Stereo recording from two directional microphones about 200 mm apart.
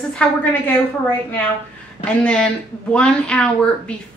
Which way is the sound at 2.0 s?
5° left (ahead or behind).